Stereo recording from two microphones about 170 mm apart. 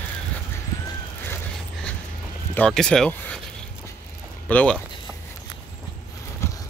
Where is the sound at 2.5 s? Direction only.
5° left (ahead or behind).